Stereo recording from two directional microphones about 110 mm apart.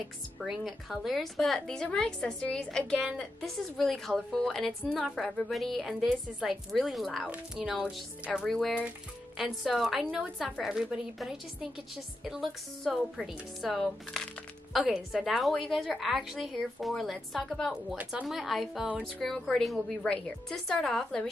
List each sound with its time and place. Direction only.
0.4 s speech: centre (ahead or behind)